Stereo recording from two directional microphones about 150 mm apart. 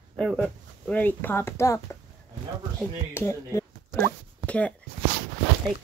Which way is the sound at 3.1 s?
15° left (ahead or behind).